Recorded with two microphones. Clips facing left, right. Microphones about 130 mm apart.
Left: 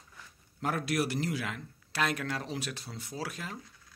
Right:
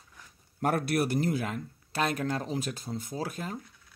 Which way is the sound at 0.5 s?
55° right (ahead or behind).